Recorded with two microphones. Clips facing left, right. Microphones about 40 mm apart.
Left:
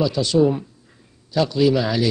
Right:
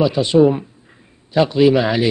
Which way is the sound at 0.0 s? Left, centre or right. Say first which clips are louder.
Right 5 dB; right.